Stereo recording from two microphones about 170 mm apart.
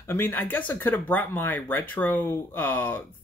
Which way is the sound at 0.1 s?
10° left (ahead or behind).